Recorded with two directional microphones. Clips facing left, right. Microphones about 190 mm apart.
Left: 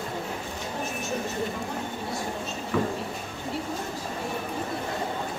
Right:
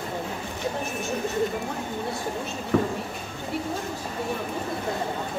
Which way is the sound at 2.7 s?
45° right (ahead or behind).